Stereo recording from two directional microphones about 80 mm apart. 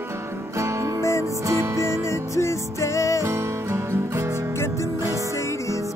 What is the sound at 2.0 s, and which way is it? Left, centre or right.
Music, left.